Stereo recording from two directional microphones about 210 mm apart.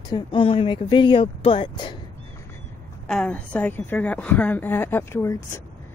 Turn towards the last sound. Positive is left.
turn(degrees=10)  # may be behind; listen again after turning